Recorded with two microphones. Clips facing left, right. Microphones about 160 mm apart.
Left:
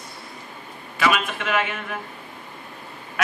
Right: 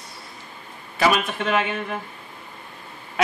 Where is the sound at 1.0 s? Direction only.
35° right (ahead or behind).